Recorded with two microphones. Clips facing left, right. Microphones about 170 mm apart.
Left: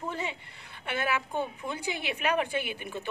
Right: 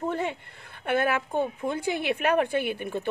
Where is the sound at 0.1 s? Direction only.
55° right (ahead or behind).